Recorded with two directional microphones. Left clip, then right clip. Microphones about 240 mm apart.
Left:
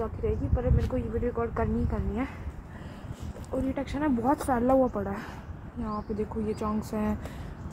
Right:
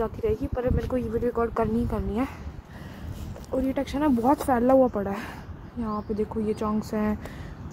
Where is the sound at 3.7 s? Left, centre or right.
Right.